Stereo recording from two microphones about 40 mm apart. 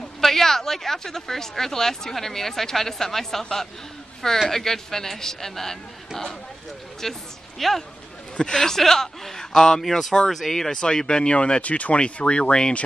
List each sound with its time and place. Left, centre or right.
0.2 s speech: centre
8.4 s speech: centre
10.7 s speech: centre